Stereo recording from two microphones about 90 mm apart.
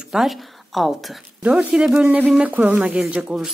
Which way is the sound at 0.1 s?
Centre (ahead or behind).